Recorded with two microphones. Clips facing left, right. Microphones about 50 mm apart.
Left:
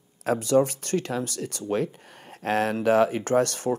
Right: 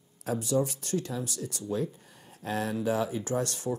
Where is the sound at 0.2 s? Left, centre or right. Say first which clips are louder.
Left 7 dB; left.